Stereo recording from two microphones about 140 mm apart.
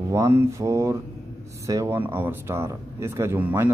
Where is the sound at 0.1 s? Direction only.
20° right (ahead or behind).